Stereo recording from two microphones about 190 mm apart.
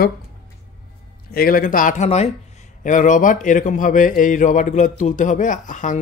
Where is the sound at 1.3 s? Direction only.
50° left (ahead or behind).